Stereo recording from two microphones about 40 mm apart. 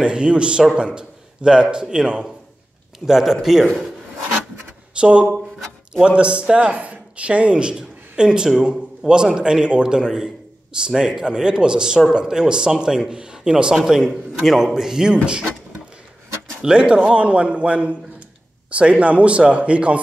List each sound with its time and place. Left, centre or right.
0.0 s a man's voice: right
3.1 s a man's voice: centre
4.9 s a man's voice: right
6.6 s a man's voice: right; by 15.1 s centre
16.6 s a man's voice: right